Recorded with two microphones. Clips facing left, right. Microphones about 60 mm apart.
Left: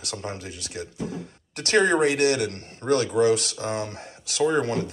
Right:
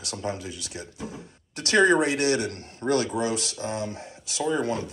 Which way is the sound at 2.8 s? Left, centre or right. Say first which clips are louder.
Left 2 dB; centre.